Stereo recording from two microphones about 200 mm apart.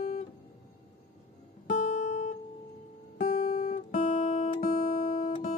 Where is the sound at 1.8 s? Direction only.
35° left (ahead or behind).